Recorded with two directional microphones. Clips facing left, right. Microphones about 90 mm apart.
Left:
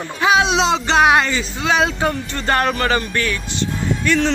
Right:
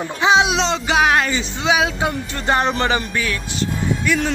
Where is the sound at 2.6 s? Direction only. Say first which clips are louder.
Left 1 dB; 25° right (ahead or behind).